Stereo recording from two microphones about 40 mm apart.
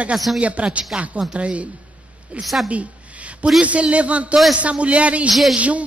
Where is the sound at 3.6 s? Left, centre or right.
Right.